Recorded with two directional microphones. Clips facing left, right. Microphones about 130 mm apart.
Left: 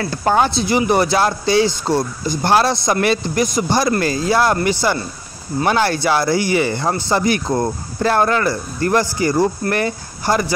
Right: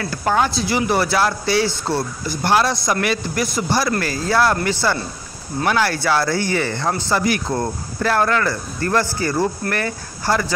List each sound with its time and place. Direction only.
0.0 s speech: 30° left (ahead or behind)
2.4 s speech: 30° left (ahead or behind)
6.0 s speech: 15° left (ahead or behind)
7.1 s speech: 25° left (ahead or behind)